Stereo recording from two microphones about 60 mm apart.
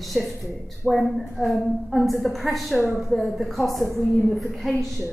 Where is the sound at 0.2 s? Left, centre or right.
Centre.